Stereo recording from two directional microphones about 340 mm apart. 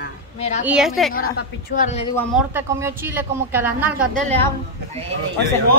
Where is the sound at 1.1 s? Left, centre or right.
Left.